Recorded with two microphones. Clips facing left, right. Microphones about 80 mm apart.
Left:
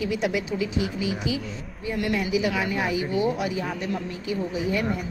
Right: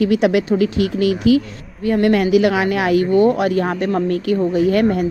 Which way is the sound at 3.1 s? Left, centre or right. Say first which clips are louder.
Right 11 dB; right.